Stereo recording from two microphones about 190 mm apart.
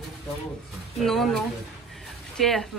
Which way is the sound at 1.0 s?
Centre (ahead or behind).